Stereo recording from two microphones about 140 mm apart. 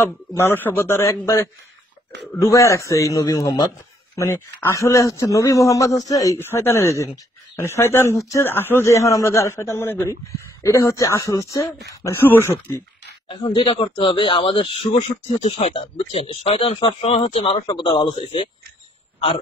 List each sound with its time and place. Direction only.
0.4 s a man's voice: 15° left (ahead or behind)
4.1 s a man's voice: 15° left (ahead or behind)
13.3 s speech: 35° left (ahead or behind)
17.6 s speech: 35° left (ahead or behind)